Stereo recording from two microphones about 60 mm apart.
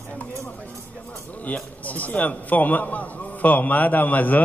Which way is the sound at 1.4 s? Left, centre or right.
Left.